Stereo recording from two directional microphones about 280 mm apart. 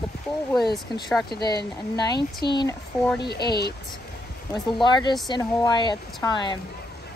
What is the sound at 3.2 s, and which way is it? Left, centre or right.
Speech, left.